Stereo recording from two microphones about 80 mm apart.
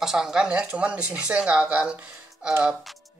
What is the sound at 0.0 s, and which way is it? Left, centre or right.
Speech, centre.